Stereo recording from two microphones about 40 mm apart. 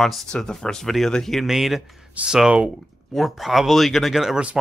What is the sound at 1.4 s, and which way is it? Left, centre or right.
Speech, centre.